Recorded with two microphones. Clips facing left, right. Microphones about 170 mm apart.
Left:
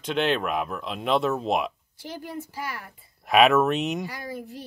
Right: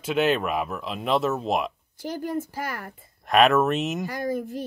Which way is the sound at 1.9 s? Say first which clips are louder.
Right 7 dB; 45° right (ahead or behind).